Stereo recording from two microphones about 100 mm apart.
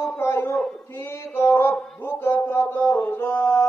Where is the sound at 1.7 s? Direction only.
10° left (ahead or behind); by 3.7 s 30° left (ahead or behind).